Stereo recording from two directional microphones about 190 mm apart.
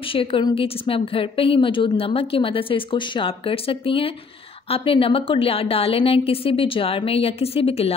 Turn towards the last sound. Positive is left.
turn(degrees=30)  # may be behind; listen again after turning